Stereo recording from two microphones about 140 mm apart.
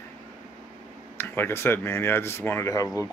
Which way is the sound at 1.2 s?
15° left (ahead or behind).